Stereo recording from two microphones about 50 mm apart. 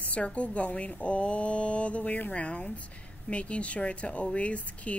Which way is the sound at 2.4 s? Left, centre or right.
Left.